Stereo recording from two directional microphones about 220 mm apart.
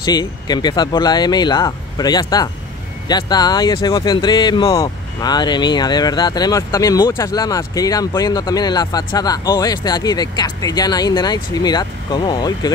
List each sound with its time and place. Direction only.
0.0 s speech: 20° left (ahead or behind)